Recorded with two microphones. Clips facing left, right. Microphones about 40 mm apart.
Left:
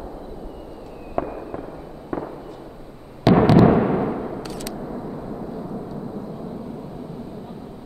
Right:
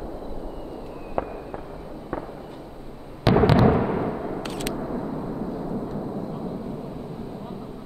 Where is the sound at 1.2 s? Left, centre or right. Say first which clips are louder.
Left 3 dB; centre.